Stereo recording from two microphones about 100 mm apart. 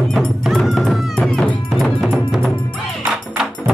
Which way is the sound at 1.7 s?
5° right (ahead or behind).